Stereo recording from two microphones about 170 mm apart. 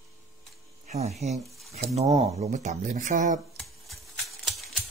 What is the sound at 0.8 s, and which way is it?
Speech, 40° right (ahead or behind).